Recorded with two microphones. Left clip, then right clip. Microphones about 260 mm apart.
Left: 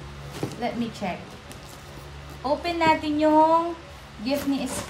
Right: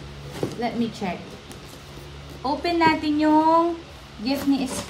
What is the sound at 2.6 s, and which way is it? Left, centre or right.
A woman's voice, centre.